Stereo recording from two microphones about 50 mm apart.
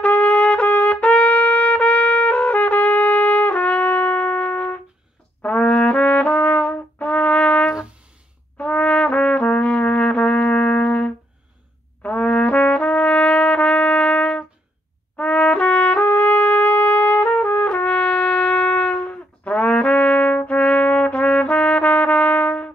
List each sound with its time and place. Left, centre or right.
0.0 s trumpet: left
8.5 s brass instrument: left
12.0 s trumpet: left